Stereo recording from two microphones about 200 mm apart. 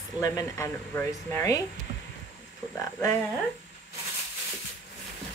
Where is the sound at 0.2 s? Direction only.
15° left (ahead or behind).